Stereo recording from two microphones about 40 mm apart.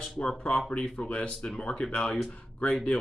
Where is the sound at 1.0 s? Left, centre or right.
Left.